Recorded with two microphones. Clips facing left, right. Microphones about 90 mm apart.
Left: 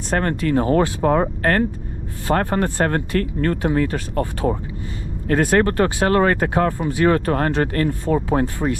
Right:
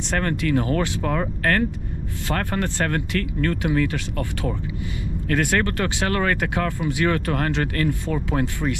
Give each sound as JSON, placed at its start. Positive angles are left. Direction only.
{"t": 0.2, "sound": "speech", "side_deg": 35}
{"t": 2.3, "sound": "speech", "side_deg": 30}
{"t": 5.3, "sound": "speech", "side_deg": 25}